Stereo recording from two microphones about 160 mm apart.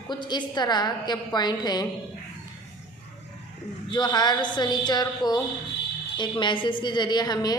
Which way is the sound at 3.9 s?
25° left (ahead or behind).